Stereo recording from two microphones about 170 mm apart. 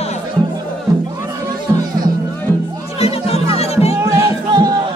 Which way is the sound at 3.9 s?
20° right (ahead or behind).